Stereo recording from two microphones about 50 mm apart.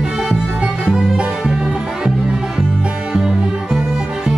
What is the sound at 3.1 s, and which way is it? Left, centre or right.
Music, centre.